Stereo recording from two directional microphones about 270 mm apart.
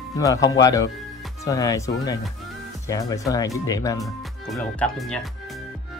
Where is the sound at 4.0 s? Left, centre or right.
Centre.